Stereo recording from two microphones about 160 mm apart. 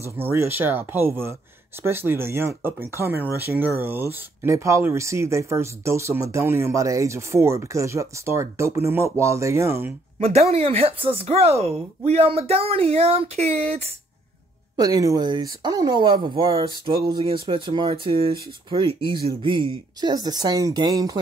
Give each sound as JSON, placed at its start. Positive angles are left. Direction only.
{"t": 0.0, "sound": "speech", "side_deg": -15}
{"t": 10.1, "sound": "speech", "side_deg": -40}
{"t": 14.8, "sound": "speech", "side_deg": -20}